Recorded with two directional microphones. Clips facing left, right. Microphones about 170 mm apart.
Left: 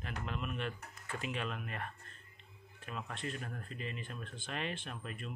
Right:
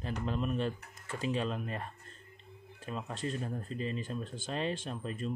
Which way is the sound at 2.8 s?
30° right (ahead or behind).